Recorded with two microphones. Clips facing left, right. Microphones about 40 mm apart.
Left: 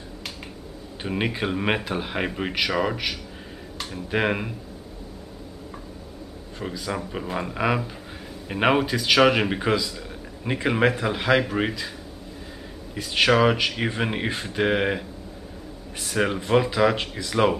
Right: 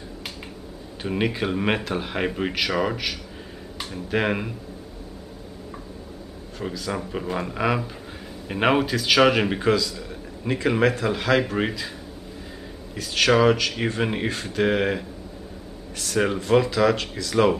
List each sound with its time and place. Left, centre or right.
1.0 s speech: centre
6.6 s a man's voice: centre
12.9 s a man's voice: centre